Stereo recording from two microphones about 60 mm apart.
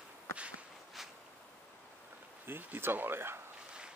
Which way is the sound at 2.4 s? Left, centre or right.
Right.